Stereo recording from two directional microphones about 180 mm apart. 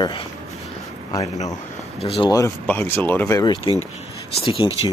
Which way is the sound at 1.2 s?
40° left (ahead or behind).